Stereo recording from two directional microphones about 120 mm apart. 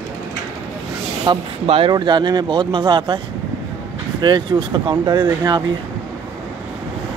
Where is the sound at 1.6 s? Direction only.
55° right (ahead or behind).